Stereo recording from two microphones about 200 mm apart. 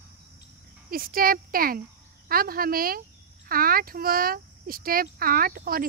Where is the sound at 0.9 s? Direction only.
45° right (ahead or behind).